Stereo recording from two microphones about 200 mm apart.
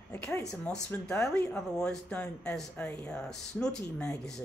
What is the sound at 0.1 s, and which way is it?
Speech, 5° left (ahead or behind).